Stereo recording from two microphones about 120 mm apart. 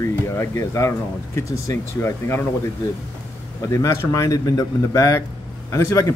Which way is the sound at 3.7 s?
25° left (ahead or behind).